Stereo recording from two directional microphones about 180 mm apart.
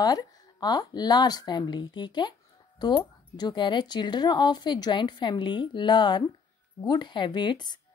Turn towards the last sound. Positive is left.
turn(degrees=25)  # may be behind; listen again after turning